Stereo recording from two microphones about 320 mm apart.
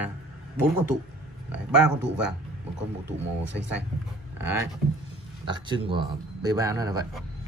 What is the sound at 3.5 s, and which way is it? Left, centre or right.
Speech, right.